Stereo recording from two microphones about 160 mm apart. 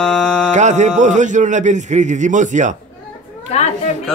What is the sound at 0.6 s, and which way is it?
A man's voice, 50° right (ahead or behind).